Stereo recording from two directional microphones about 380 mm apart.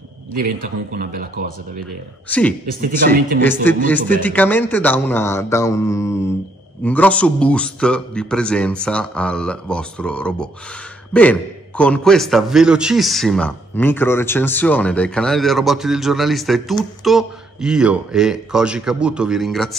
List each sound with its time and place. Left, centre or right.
0.3 s a man's voice: right
2.2 s a man's voice: centre
2.8 s a man's voice: right
3.4 s a man's voice: centre